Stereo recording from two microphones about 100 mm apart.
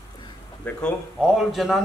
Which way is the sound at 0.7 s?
10° left (ahead or behind).